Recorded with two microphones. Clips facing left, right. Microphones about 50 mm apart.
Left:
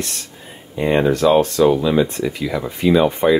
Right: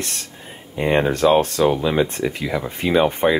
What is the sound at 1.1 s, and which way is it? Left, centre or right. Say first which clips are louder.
Speech: left 2 dB; right.